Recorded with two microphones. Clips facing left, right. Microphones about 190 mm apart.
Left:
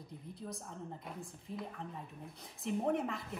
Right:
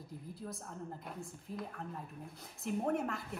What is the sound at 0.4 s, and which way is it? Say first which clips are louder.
A woman's voice: left 1 dB; centre (ahead or behind).